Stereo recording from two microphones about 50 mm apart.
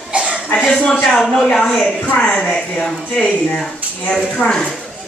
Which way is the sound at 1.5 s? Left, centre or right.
Centre.